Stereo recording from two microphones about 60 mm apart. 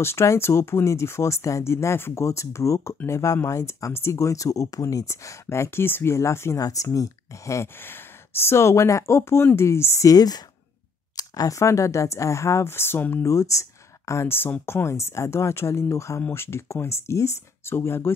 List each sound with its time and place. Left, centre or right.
0.0 s speech: left
2.2 s speech: left
6.6 s speech: left
10.0 s speech: left
13.2 s speech: left
14.2 s speech: left
16.2 s speech: left